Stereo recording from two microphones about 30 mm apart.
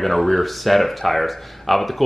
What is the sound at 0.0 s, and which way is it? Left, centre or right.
Speech, centre.